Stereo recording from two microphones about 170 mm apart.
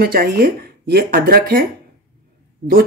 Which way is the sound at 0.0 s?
60° right (ahead or behind).